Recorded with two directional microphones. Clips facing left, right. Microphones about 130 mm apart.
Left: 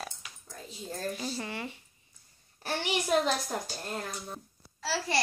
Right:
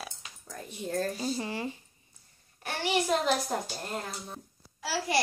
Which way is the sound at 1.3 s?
25° right (ahead or behind).